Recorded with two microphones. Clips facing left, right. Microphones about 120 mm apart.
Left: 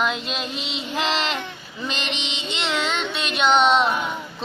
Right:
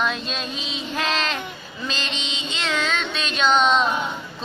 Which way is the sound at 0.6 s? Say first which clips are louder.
Left 1 dB; 75° left (ahead or behind).